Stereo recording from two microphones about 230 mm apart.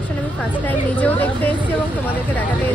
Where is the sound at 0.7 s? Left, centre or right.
Centre.